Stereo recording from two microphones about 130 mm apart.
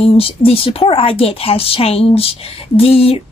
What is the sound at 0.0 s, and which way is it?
A woman's voice, 45° left (ahead or behind).